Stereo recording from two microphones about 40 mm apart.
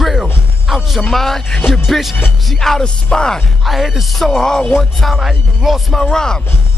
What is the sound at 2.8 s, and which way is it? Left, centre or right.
Speech, centre.